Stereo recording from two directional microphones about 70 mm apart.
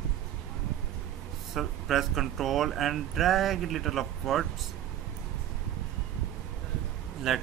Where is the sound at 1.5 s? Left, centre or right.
Centre.